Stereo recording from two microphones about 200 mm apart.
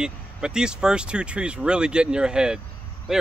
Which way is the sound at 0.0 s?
5° right (ahead or behind).